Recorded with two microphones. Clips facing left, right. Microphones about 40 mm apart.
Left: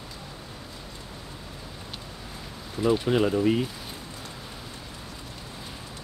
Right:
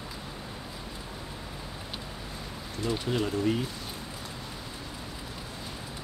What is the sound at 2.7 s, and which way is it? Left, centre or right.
Speech, centre.